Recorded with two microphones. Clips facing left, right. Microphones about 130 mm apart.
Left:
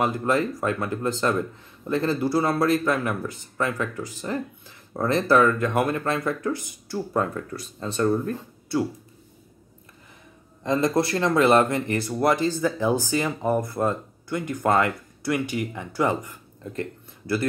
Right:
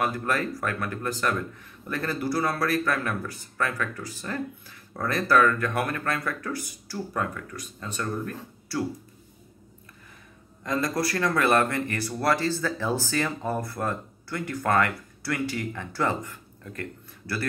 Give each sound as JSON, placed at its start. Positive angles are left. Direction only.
{"t": 0.0, "sound": "speech", "side_deg": 20}
{"t": 10.6, "sound": "speech", "side_deg": 25}